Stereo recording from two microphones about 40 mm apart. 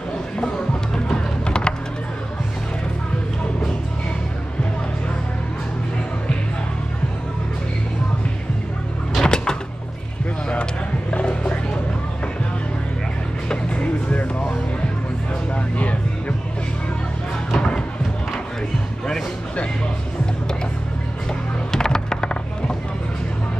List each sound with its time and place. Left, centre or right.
0.4 s music: centre
9.1 s door: centre
10.5 s vehicle: left
13.5 s music: left
15.5 s music: left
17.6 s music: centre
21.7 s music: centre